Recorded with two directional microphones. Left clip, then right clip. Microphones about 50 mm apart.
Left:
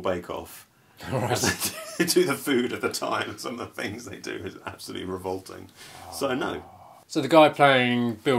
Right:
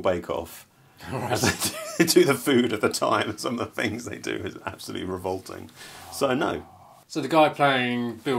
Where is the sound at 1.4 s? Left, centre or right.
Right.